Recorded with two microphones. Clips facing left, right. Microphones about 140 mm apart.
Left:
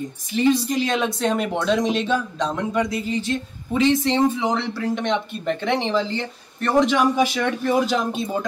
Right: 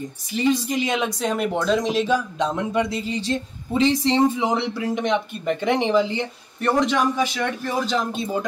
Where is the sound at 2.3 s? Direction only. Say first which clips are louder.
Even; 20° right (ahead or behind).